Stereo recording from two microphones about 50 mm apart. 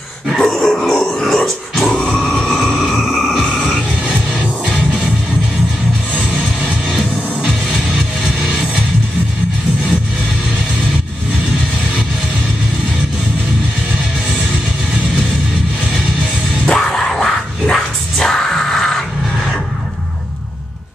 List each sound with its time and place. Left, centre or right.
0.3 s grunt: centre
2.7 s a sound: centre
6.9 s music: centre
16.6 s music: centre